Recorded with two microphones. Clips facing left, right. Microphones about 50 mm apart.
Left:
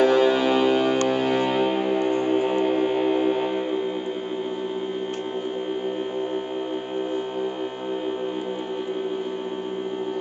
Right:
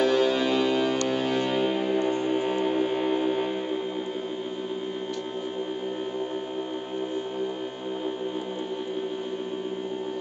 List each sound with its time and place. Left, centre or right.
0.0 s music: left